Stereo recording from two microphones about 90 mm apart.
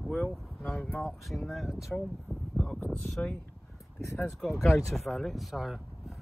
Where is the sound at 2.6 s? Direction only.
10° left (ahead or behind).